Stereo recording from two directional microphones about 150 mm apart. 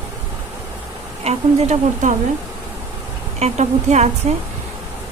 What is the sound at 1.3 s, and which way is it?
Speech, 50° right (ahead or behind).